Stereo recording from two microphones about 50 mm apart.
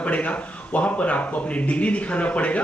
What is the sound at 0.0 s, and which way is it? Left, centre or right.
A man's voice, left.